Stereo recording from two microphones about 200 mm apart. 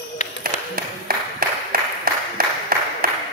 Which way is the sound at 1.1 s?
45° right (ahead or behind).